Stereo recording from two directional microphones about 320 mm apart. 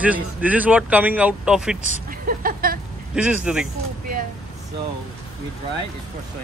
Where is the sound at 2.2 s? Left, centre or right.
Right.